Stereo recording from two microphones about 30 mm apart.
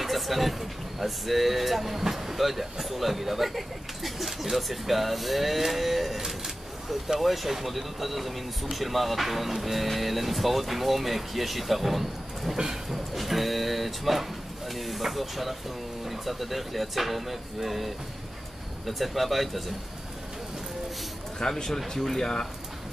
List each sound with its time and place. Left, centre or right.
0.0 s speech: centre
21.4 s speech: left